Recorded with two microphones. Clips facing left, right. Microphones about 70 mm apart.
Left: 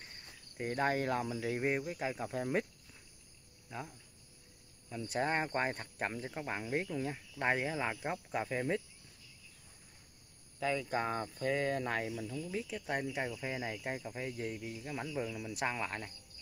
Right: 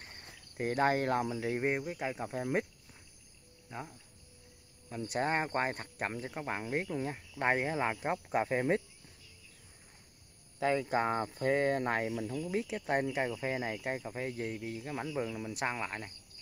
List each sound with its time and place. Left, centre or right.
0.0 s cricket: right
0.6 s speech: right
1.4 s speech: right
2.0 s speech: centre
5.0 s cricket: centre
5.4 s speech: right
10.6 s speech: right
15.6 s cricket: centre